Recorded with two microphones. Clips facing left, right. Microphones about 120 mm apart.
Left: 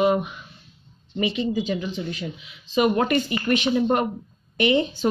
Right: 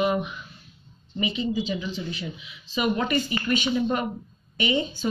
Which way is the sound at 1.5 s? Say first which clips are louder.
Left 2 dB; 50° left (ahead or behind).